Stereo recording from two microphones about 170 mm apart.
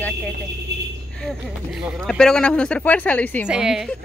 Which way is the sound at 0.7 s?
80° right.